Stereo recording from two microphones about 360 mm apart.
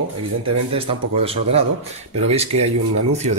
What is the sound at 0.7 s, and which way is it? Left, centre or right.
Speech, centre.